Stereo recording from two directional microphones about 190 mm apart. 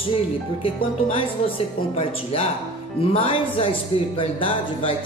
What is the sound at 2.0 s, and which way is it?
Speech, 30° left (ahead or behind).